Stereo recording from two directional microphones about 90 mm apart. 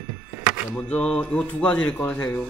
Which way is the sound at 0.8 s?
15° left (ahead or behind).